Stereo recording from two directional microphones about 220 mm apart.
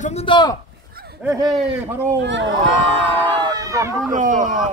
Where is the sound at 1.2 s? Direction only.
15° right (ahead or behind).